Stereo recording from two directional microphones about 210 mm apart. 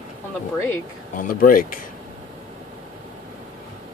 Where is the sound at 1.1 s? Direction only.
40° left (ahead or behind).